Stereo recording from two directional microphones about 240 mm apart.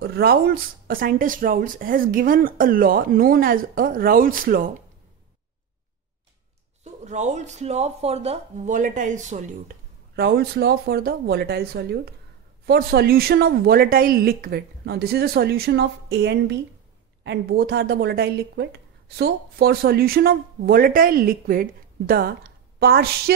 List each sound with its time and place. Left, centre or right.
0.0 s speech: right
6.8 s speech: right